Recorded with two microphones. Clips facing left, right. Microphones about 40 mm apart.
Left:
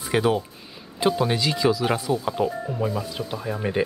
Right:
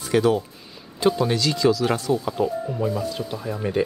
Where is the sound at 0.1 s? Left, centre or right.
Centre.